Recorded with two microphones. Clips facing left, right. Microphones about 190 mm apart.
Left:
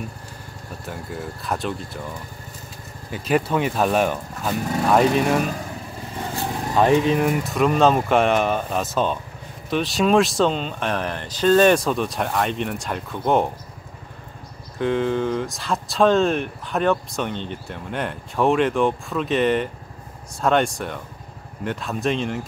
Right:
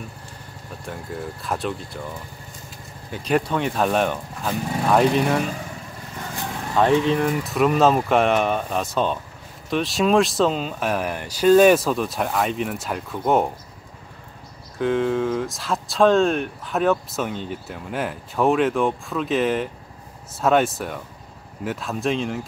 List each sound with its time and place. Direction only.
0.8 s speech: centre (ahead or behind)
6.2 s vehicle: 35° left (ahead or behind)
6.7 s speech: 10° left (ahead or behind)
14.8 s speech: centre (ahead or behind)